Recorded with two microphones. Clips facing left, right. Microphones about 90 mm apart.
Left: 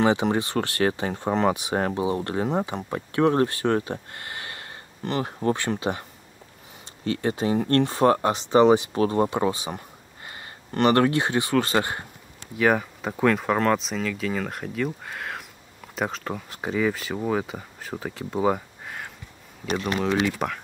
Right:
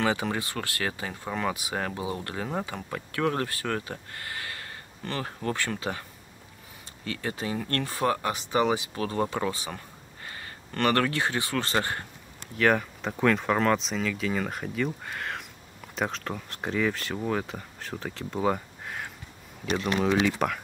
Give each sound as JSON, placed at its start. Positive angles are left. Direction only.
{"t": 0.0, "sound": "speech", "side_deg": 25}
{"t": 7.1, "sound": "speech", "side_deg": 30}
{"t": 12.5, "sound": "speech", "side_deg": 5}
{"t": 20.2, "sound": "speech", "side_deg": 0}